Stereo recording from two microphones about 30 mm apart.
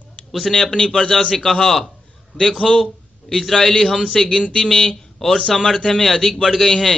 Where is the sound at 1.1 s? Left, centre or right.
Centre.